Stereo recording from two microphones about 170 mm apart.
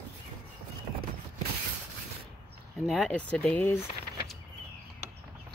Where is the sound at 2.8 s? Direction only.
Centre (ahead or behind).